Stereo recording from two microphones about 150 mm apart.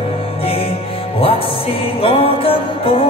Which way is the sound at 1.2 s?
40° left (ahead or behind).